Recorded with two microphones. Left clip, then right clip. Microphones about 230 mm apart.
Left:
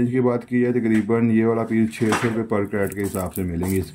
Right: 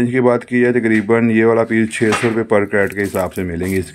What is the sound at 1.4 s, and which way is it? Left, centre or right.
Speech, right.